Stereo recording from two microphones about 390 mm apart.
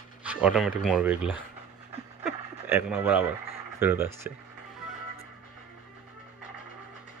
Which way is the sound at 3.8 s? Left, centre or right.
Centre.